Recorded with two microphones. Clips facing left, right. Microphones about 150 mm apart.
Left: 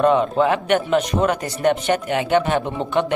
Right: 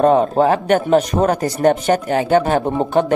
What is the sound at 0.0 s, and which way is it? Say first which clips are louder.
A man's voice: right 3 dB; 40° right (ahead or behind).